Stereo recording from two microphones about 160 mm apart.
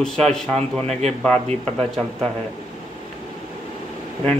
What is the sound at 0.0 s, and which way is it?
Speech, 5° left (ahead or behind).